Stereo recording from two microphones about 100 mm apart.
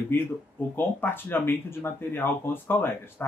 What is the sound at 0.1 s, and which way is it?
Speech, 20° left (ahead or behind).